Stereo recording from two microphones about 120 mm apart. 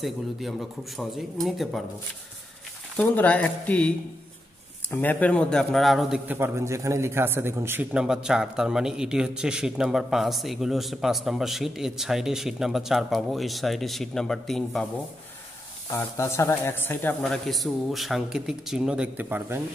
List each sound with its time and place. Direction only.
0.0 s a man's voice: centre (ahead or behind)
3.0 s speech: 10° left (ahead or behind)
4.9 s a man's voice: 10° left (ahead or behind)
6.2 s a man's voice: 20° right (ahead or behind); by 14.9 s 5° left (ahead or behind)
15.9 s a man's voice: 25° left (ahead or behind)
17.2 s a man's voice: centre (ahead or behind); by 19.6 s 15° right (ahead or behind)